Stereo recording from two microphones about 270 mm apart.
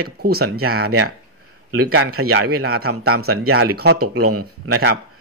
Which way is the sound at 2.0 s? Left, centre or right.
Right.